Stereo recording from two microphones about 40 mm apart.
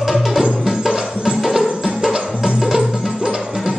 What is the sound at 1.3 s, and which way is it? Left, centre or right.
Music, centre.